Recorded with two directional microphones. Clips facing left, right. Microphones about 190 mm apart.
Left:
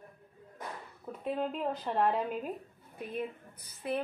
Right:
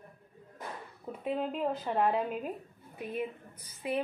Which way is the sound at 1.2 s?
5° right (ahead or behind).